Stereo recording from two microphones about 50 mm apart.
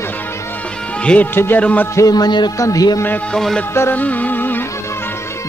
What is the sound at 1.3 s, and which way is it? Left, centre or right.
Speech, left.